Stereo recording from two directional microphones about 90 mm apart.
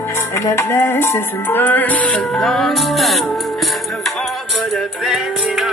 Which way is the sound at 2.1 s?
5° left (ahead or behind).